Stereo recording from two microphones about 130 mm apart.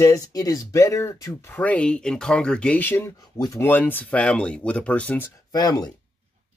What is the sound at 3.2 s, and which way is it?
Speech, 30° left (ahead or behind).